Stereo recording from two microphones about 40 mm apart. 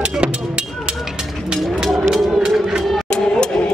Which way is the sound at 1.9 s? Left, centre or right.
Centre.